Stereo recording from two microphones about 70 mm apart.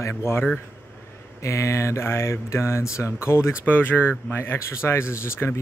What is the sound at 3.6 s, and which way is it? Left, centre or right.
Speech, left.